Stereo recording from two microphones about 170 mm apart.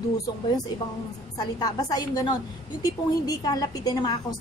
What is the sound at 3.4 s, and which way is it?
Speech, 20° left (ahead or behind).